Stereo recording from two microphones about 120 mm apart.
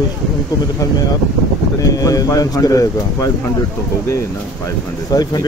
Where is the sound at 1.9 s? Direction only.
30° left (ahead or behind).